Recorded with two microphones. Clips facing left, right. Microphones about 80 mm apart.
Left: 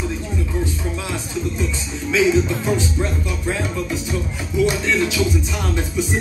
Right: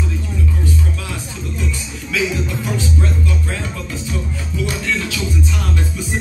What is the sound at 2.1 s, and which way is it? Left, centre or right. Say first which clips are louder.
Music: left 4 dB; left.